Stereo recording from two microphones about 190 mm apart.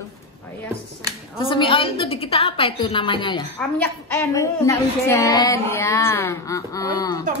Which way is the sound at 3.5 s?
10° left (ahead or behind).